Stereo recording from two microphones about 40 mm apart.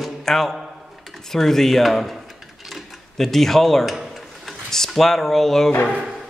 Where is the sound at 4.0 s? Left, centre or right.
Centre.